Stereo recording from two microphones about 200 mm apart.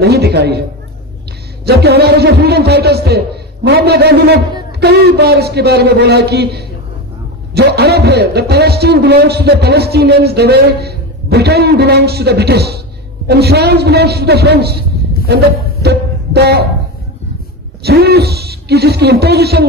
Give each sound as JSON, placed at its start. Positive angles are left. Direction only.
{"t": 0.0, "sound": "a man's voice", "side_deg": -55}
{"t": 1.7, "sound": "a man's voice", "side_deg": -55}
{"t": 17.8, "sound": "a man's voice", "side_deg": -50}